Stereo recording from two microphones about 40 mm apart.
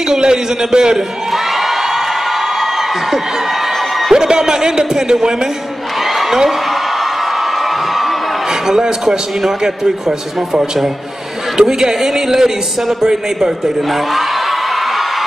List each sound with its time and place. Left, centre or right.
0.1 s a man's voice: centre
4.1 s speech: centre
8.6 s speech: centre